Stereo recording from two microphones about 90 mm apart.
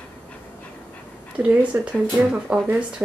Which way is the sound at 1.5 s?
15° right (ahead or behind).